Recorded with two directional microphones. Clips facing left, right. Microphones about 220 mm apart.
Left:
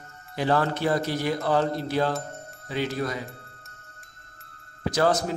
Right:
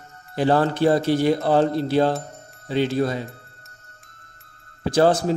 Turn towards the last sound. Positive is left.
turn(degrees=-30)  # may be behind; listen again after turning